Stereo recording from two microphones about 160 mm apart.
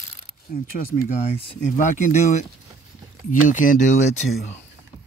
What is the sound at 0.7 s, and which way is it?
Speech, 50° left (ahead or behind).